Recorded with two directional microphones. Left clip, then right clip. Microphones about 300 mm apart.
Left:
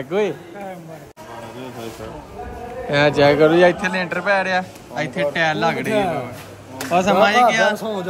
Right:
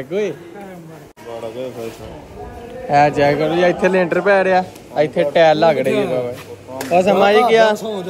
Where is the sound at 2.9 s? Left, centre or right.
Centre.